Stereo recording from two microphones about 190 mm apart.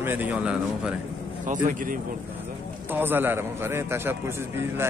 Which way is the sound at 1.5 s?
40° right (ahead or behind).